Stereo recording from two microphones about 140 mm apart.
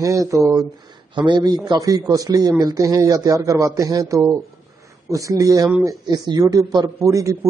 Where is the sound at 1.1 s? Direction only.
35° right (ahead or behind).